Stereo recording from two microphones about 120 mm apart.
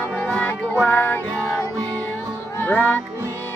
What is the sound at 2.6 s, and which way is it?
Music, 15° left (ahead or behind).